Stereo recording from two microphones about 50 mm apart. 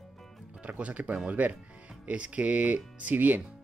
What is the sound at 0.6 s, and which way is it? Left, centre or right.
Speech, right.